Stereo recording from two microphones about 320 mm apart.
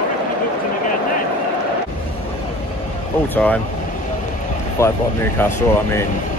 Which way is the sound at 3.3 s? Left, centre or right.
Centre.